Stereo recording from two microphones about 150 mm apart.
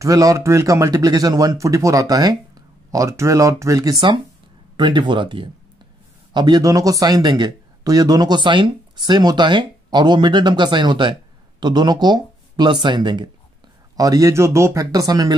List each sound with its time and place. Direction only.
0.0 s speech: 20° right (ahead or behind)
4.7 s speech: 30° right (ahead or behind)